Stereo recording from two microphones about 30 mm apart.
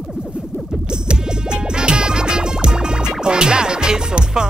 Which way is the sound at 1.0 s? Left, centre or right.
Right.